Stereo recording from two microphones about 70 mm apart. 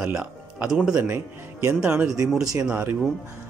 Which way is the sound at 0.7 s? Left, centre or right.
Centre.